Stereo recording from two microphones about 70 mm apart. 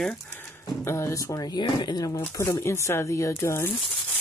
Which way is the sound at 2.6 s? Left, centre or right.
Left.